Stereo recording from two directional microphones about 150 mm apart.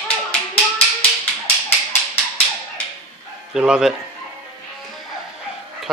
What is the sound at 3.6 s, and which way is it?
Speech, 5° right (ahead or behind).